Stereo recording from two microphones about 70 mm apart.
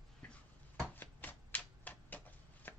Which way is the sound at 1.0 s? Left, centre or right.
Left.